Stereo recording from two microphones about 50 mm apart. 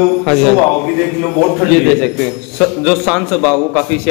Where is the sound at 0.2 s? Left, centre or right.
Centre.